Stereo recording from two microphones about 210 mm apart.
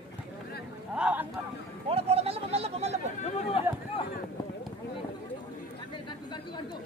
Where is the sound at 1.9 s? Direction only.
30° right (ahead or behind).